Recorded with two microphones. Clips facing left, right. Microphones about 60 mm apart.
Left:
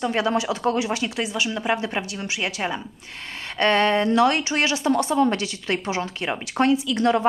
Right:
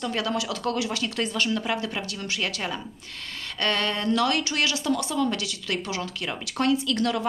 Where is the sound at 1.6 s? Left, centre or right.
Left.